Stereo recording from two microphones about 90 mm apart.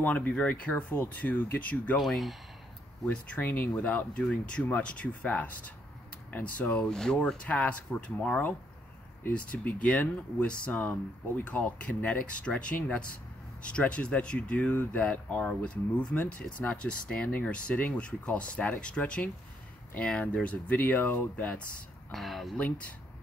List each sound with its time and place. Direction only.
0.0 s speech: 15° left (ahead or behind)
2.0 s speech: centre (ahead or behind)
3.3 s speech: 20° left (ahead or behind)
22.1 s speech: centre (ahead or behind)
22.6 s speech: 15° left (ahead or behind)